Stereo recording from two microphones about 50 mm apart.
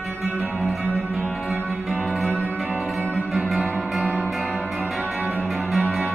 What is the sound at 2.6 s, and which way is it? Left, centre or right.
Music, right.